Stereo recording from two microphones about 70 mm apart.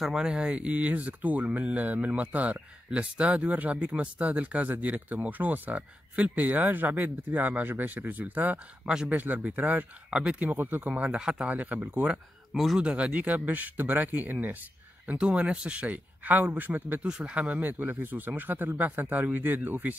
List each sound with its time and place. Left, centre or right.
0.0 s speech: centre
8.8 s a man's voice: centre
9.1 s speech: right
12.5 s speech: centre
12.8 s speech: centre